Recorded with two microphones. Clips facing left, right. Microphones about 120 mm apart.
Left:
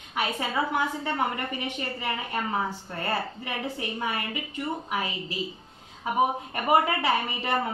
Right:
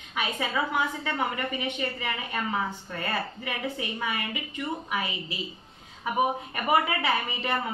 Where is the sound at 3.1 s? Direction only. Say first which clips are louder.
Left 2 dB; 35° left (ahead or behind).